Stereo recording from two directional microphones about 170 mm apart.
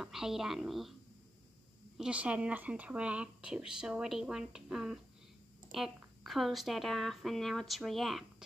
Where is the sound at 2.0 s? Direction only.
5° right (ahead or behind).